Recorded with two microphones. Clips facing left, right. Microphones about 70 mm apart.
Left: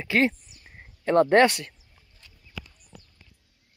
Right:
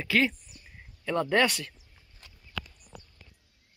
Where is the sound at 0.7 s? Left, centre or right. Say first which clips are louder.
Left 7 dB; left.